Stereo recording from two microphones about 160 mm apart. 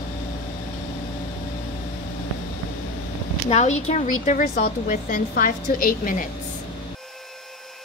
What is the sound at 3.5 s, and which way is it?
A woman's voice, 45° left (ahead or behind).